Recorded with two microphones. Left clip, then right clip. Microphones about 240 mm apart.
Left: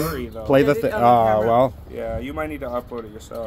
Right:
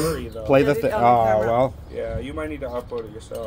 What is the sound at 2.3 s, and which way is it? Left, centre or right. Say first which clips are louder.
Speech: left 2 dB; left.